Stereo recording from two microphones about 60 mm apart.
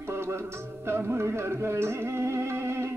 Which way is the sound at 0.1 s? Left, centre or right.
Right.